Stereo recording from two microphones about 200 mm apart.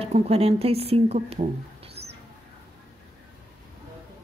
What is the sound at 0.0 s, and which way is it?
Speech, 30° right (ahead or behind).